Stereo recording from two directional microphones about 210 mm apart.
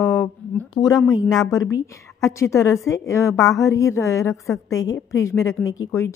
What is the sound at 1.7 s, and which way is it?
A woman's voice, 15° left (ahead or behind).